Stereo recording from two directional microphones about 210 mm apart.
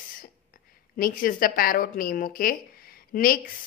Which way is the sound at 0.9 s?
40° left (ahead or behind).